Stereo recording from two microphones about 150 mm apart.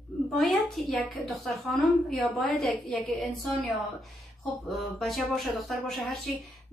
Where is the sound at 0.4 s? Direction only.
Centre (ahead or behind).